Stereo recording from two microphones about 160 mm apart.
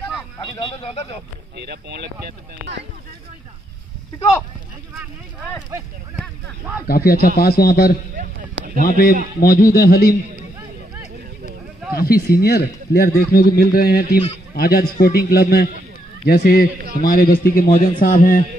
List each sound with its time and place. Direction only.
1.7 s speech: 90° right
6.9 s a man's voice: 70° left (ahead or behind)
8.5 s a sound: 65° right (ahead or behind)
8.8 s a man's voice: 70° left (ahead or behind)
11.9 s a man's voice: 70° left (ahead or behind)